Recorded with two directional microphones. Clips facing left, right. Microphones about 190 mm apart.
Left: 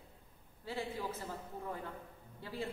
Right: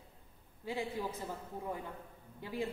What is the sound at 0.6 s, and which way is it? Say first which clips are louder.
Speech: right 2 dB; 15° right (ahead or behind).